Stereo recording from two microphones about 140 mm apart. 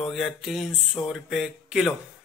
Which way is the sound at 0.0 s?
Centre (ahead or behind).